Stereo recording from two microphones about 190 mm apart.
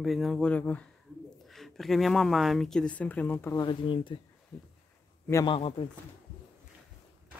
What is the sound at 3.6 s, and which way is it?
Speech, 25° left (ahead or behind).